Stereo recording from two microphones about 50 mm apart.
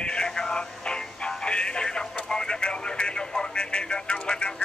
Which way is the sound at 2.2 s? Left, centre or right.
Centre.